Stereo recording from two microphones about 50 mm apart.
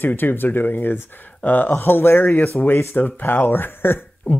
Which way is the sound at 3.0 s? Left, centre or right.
Left.